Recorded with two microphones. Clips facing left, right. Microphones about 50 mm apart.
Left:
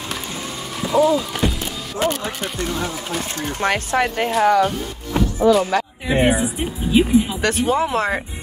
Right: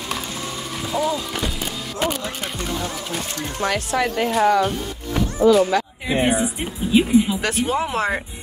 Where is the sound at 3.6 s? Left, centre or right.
Left.